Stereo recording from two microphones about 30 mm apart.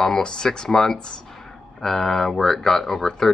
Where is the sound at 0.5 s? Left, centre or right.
Centre.